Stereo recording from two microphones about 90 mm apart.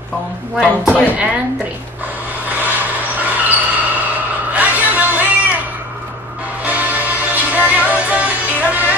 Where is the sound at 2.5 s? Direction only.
20° right (ahead or behind).